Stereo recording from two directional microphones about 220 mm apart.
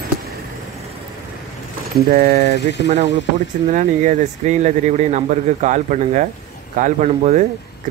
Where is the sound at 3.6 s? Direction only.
35° right (ahead or behind).